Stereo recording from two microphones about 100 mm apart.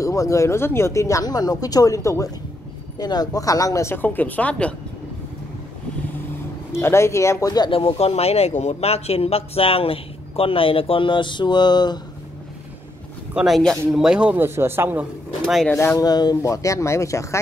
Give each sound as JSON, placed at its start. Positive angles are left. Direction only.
{"t": 0.0, "sound": "speech", "side_deg": 30}
{"t": 3.9, "sound": "speech", "side_deg": 20}
{"t": 6.7, "sound": "speech", "side_deg": 25}
{"t": 7.7, "sound": "speech", "side_deg": 75}
{"t": 13.3, "sound": "speech", "side_deg": -10}
{"t": 14.3, "sound": "speech", "side_deg": -25}
{"t": 15.4, "sound": "speech", "side_deg": 5}
{"t": 16.0, "sound": "speech", "side_deg": 40}